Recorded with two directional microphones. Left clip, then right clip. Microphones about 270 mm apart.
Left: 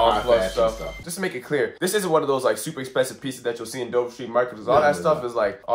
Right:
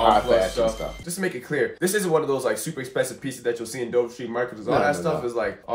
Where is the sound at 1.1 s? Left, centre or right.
Centre.